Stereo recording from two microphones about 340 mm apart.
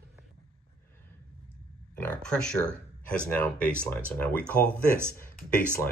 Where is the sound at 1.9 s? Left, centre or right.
Centre.